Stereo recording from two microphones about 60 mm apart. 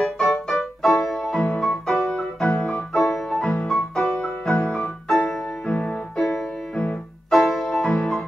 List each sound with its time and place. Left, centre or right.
0.5 s music: centre